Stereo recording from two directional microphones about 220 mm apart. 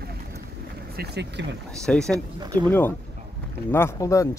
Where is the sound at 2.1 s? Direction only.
20° right (ahead or behind).